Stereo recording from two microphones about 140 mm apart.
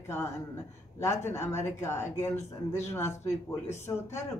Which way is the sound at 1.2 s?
20° left (ahead or behind).